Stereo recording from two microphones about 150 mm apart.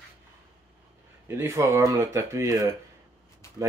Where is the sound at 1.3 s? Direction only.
20° right (ahead or behind).